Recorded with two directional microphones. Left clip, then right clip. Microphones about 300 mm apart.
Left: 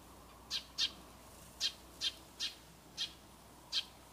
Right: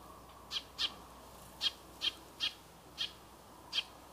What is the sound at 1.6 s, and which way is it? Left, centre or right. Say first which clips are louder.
Owl: right 2 dB; left.